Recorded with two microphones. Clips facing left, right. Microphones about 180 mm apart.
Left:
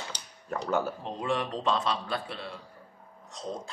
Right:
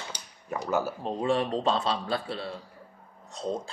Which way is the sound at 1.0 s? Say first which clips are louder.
Right 4 dB; 30° right (ahead or behind).